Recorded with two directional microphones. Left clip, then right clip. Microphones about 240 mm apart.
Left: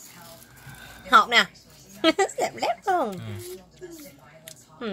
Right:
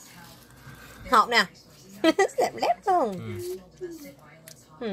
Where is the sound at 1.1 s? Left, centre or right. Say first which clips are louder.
Left 3 dB; centre.